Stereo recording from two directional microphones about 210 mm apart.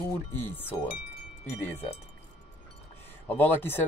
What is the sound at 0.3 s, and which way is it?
Speech, 10° left (ahead or behind).